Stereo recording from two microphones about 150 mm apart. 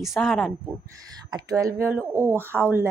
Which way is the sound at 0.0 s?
Centre (ahead or behind).